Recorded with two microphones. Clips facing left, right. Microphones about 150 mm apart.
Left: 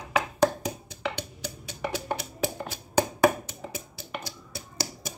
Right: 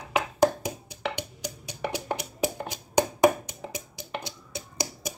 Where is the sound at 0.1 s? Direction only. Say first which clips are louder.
Right 1 dB; 10° right (ahead or behind).